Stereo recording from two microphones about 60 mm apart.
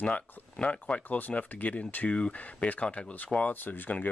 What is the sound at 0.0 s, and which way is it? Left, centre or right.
Speech, centre.